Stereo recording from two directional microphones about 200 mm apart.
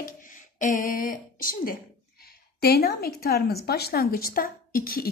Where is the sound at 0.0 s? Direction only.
40° left (ahead or behind).